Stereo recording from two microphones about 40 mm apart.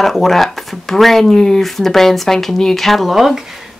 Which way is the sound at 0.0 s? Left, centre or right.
Centre.